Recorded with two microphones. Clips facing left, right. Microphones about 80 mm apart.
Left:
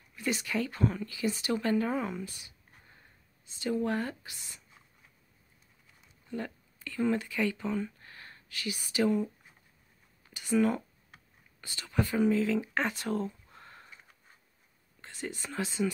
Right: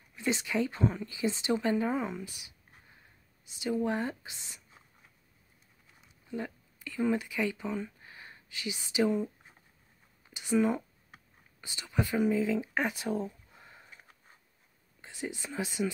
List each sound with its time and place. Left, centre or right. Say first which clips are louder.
0.1 s a woman's voice: right 1 dB; right
6.2 s speech: even; centre
10.3 s a sound: even; centre
11.6 s speech: left 1 dB; centre
15.0 s speech: right 1 dB; centre